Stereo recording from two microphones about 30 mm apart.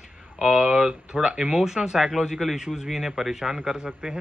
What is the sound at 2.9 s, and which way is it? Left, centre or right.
Speech, centre.